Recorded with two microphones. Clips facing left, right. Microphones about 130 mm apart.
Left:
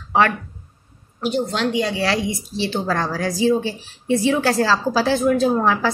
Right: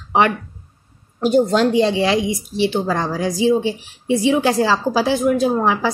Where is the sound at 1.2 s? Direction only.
40° right (ahead or behind).